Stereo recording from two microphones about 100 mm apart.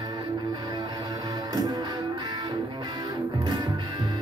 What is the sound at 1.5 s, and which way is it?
Music, 40° right (ahead or behind).